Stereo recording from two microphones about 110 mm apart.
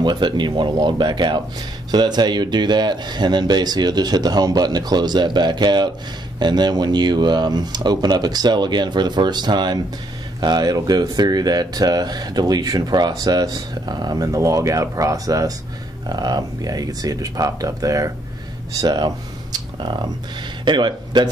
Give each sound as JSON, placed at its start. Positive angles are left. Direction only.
{"t": 0.0, "sound": "speech", "side_deg": -45}